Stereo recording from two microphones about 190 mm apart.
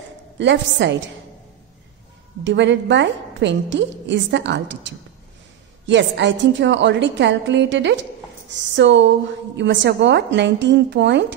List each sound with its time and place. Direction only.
0.4 s a woman's voice: 70° right (ahead or behind)
2.4 s a woman's voice: 70° right (ahead or behind)